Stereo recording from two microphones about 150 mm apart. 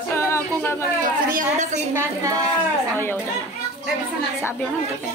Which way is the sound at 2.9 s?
15° left (ahead or behind).